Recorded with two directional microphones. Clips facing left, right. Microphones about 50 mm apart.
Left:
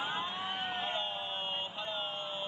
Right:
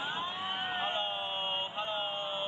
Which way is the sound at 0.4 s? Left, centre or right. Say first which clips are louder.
Right 2 dB; centre.